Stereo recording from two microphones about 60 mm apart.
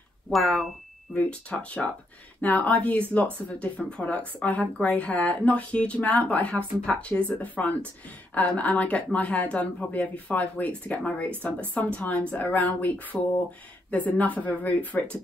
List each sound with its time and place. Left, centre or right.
0.3 s speech: centre
1.1 s speech: left